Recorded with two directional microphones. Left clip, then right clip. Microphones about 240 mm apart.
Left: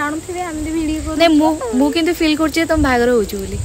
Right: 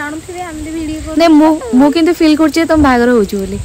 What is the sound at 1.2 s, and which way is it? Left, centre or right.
Speech, right.